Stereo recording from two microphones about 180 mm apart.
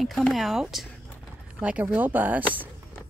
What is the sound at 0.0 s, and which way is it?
Speech, centre (ahead or behind).